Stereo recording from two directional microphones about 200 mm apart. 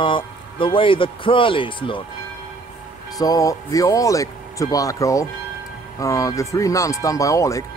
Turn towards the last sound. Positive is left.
turn(degrees=15)  # may be behind; listen again after turning